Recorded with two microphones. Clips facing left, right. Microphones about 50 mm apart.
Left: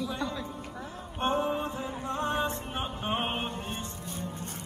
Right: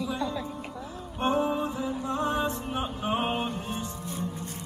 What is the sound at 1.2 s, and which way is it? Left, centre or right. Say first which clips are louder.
Mantra: right 2 dB; left.